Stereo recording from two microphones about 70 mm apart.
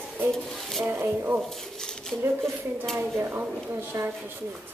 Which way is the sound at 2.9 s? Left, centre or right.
Right.